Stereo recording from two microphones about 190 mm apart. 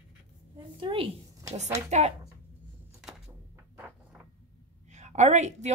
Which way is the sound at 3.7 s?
10° right (ahead or behind).